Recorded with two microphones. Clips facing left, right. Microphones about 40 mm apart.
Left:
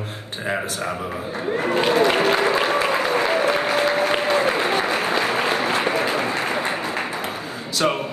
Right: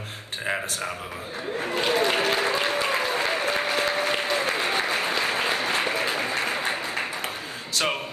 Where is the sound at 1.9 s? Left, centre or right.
Left.